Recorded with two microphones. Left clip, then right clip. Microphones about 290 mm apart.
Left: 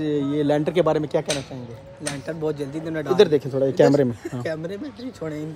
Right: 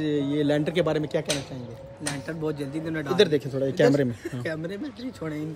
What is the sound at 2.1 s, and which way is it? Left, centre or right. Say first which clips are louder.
Speech: left 5 dB; centre.